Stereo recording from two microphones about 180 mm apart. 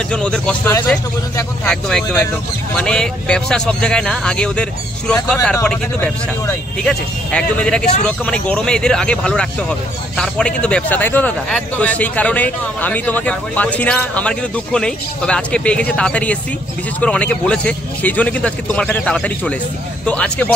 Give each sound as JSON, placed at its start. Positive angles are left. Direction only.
{"t": 0.1, "sound": "a man's voice", "side_deg": 5}